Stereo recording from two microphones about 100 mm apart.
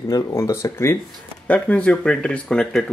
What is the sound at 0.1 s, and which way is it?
Speech, 25° left (ahead or behind).